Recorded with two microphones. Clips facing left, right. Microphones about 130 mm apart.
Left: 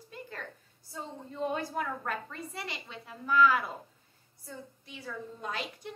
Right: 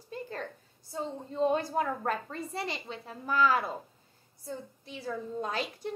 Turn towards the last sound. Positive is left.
turn(degrees=-35)  # may be behind; listen again after turning